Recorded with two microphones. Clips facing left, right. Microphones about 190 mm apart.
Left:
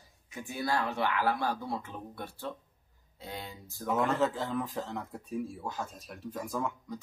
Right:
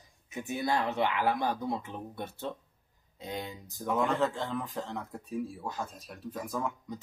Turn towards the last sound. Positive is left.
turn(degrees=0)  # may be behind; listen again after turning